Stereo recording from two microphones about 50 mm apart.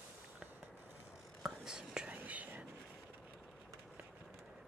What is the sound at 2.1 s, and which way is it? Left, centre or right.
Whispering, right.